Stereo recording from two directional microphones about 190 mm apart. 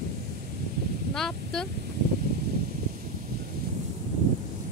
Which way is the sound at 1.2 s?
Centre (ahead or behind).